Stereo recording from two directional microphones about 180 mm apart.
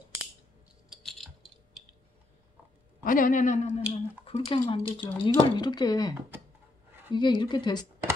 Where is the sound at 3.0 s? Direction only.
50° left (ahead or behind).